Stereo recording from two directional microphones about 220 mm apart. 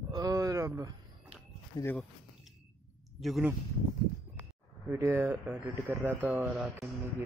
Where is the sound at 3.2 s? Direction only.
5° right (ahead or behind).